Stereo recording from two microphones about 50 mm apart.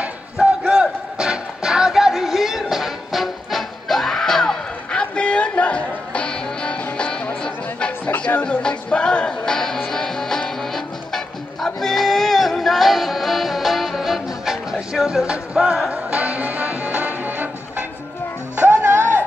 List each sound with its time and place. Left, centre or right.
0.0 s battle cry: right
1.2 s music: centre
4.9 s music: left; by 15.9 s centre
15.9 s music: right